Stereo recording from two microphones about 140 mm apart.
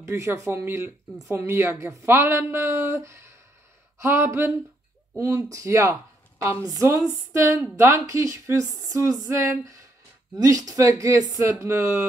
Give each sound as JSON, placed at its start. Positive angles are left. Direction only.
{"t": 0.0, "sound": "speech", "side_deg": -20}